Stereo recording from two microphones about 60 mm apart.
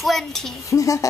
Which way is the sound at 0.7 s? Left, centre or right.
Left.